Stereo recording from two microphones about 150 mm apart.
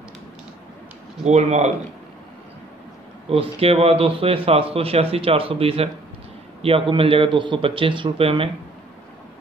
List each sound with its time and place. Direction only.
1.2 s speech: 50° right (ahead or behind)
3.3 s speech: 40° right (ahead or behind)